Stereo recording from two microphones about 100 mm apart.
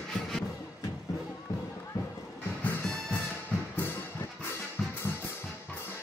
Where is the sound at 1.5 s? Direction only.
35° left (ahead or behind).